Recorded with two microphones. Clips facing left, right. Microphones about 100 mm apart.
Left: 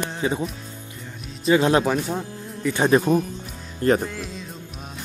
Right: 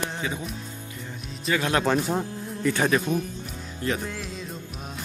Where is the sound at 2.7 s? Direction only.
25° left (ahead or behind).